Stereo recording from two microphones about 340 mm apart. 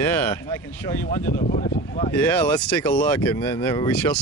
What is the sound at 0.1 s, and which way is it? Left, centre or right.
Speech, centre.